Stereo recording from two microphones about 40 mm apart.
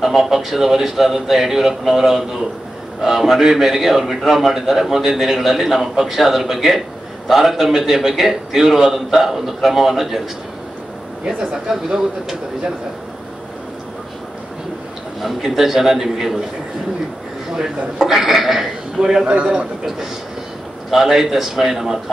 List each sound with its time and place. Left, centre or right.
0.0 s a man's voice: centre
11.2 s a man's voice: centre
15.2 s a man's voice: centre
17.6 s a man's voice: centre
18.9 s a man's voice: centre
20.9 s a man's voice: centre